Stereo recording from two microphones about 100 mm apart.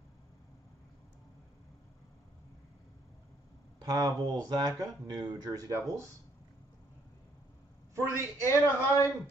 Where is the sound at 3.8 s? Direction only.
40° right (ahead or behind).